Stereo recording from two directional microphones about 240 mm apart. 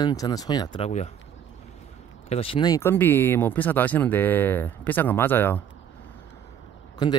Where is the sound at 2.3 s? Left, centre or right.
Left; by 5.6 s centre.